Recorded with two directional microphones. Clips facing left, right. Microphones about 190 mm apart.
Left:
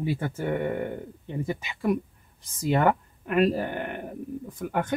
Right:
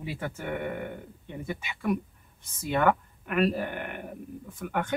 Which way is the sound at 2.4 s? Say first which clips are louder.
Left 3 dB; 35° left (ahead or behind).